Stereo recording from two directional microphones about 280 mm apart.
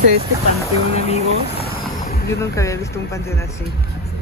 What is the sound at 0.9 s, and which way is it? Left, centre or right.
Speech, left.